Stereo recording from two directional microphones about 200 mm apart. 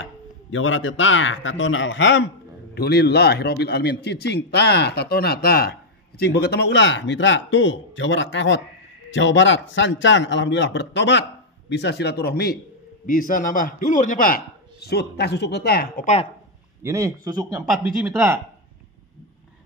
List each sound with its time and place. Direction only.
0.0 s a man's voice: 80° left; by 16.1 s 50° left (ahead or behind)
16.8 s speech: 15° right (ahead or behind)